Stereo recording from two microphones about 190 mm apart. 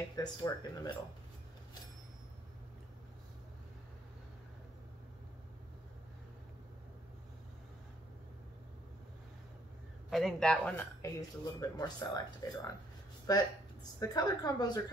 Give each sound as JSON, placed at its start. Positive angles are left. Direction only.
{"t": 0.1, "sound": "a woman's voice", "side_deg": 20}
{"t": 10.0, "sound": "a woman's voice", "side_deg": 0}